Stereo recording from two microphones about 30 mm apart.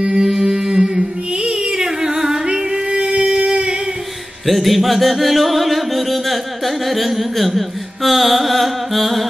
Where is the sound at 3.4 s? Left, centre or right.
Right.